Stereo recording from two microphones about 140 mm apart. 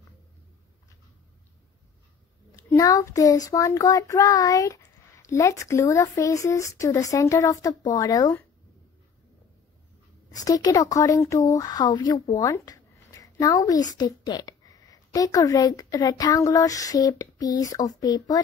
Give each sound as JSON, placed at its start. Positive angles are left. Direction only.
{"t": 2.8, "sound": "child singing", "side_deg": 25}
{"t": 10.3, "sound": "child singing", "side_deg": 25}
{"t": 12.4, "sound": "speech", "side_deg": 25}